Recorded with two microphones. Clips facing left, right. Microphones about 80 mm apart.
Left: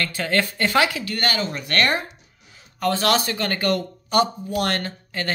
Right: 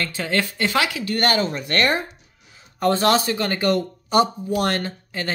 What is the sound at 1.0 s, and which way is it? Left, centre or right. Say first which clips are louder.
Speech: right 4 dB; right.